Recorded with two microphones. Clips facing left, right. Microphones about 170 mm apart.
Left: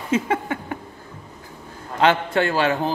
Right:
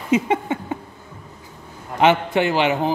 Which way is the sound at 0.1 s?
20° right (ahead or behind).